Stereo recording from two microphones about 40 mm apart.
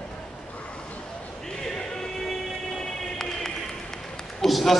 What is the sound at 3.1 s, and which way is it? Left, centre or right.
Music, centre.